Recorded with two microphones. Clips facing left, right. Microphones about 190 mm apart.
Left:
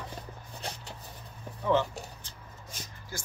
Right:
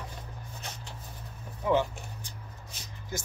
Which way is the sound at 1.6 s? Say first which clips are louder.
Even; 15° right (ahead or behind).